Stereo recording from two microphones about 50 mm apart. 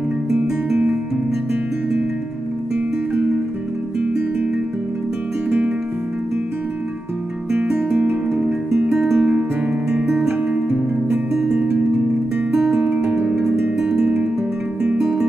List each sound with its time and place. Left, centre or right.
7.9 s music: right
8.9 s music: centre
13.0 s music: right